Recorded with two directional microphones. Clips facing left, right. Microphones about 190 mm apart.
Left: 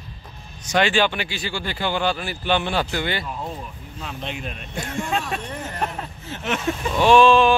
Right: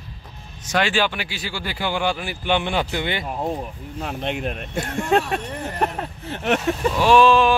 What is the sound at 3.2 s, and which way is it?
Speech, 45° right (ahead or behind).